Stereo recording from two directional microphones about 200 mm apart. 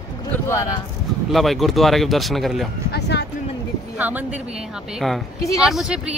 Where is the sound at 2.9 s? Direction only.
55° left (ahead or behind).